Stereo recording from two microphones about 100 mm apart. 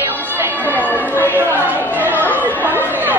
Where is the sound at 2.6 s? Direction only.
20° right (ahead or behind).